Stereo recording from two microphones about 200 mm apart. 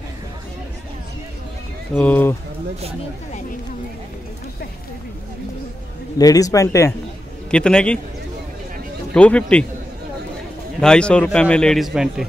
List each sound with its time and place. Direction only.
2.0 s speech: 10° left (ahead or behind)
6.1 s a man's voice: 20° left (ahead or behind)
9.1 s a man's voice: 5° left (ahead or behind)
10.8 s a man's voice: 5° left (ahead or behind)